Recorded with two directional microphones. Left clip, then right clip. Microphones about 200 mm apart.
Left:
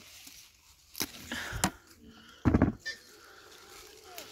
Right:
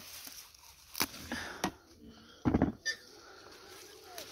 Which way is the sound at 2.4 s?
40° left (ahead or behind).